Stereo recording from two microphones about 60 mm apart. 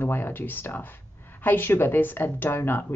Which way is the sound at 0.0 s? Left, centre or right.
Left.